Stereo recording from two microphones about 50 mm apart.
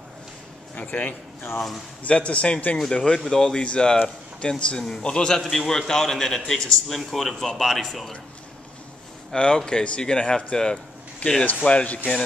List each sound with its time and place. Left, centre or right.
0.7 s a man's voice: left; by 8.1 s centre
9.3 s a man's voice: centre
11.2 s a man's voice: left